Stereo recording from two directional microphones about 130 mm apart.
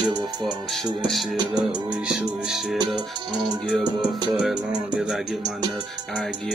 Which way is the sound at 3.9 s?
Centre (ahead or behind).